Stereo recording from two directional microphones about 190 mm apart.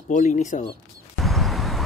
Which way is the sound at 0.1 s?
40° left (ahead or behind).